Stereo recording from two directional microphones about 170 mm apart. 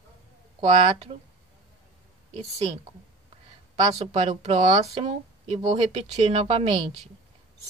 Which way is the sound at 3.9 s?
40° right (ahead or behind).